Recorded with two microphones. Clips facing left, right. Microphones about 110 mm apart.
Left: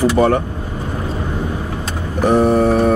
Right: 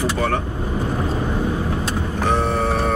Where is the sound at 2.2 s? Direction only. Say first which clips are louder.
Left 8 dB; 10° left (ahead or behind).